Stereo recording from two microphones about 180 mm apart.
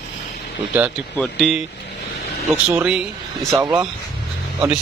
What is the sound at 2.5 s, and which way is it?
Speech, 10° right (ahead or behind).